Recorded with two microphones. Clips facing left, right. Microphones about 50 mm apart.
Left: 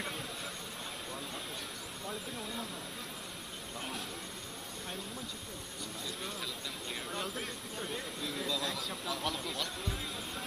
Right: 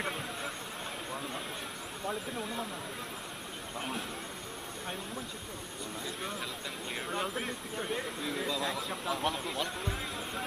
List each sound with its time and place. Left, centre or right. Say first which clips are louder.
2.3 s speech: right 4 dB; centre
7.1 s speech: right 5 dB; right